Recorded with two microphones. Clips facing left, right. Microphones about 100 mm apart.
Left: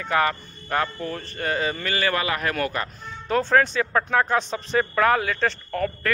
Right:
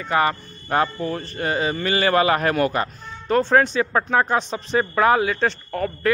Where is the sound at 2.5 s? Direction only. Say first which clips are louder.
Right 6 dB; 20° right (ahead or behind).